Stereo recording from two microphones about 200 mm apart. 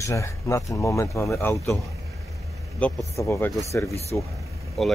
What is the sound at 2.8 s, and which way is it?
Speech, 5° left (ahead or behind).